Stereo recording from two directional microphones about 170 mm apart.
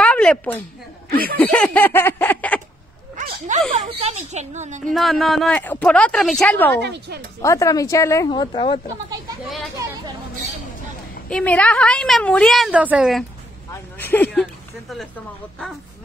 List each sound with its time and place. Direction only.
0.0 s a sound: 5° left (ahead or behind)
3.2 s a woman's voice: 45° right (ahead or behind)
4.8 s a woman's voice: centre (ahead or behind)
6.8 s speech: 75° right (ahead or behind)
7.4 s speech: 20° left (ahead or behind)
11.2 s a woman's voice: 5° left (ahead or behind)
13.7 s a man's voice: 10° left (ahead or behind)